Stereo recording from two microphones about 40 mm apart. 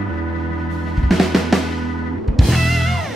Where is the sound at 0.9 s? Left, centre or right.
Centre.